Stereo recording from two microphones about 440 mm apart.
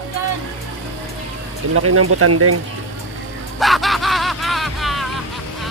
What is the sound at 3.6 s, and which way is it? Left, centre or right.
Music, centre.